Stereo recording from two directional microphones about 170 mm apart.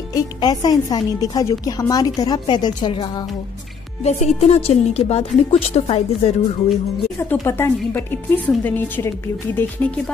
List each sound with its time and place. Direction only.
0.1 s speech: 25° left (ahead or behind)
4.0 s a woman's voice: 40° left (ahead or behind)
7.4 s a woman's voice: 15° left (ahead or behind)